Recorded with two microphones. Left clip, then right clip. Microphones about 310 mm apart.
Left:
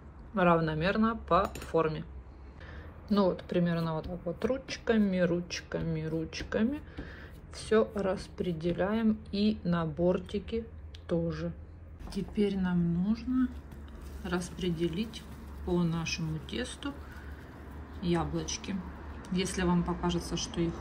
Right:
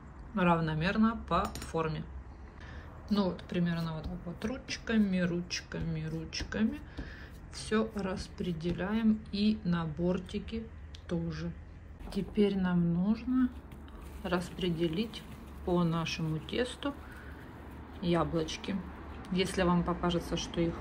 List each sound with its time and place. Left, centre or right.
0.4 s a woman's voice: centre
3.1 s a woman's voice: centre
18.0 s a woman's voice: centre